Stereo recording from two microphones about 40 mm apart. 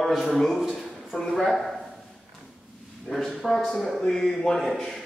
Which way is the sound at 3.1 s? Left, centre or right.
Centre.